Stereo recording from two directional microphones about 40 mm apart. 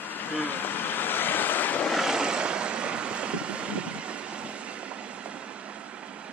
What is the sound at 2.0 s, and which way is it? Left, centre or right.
Vehicle, centre.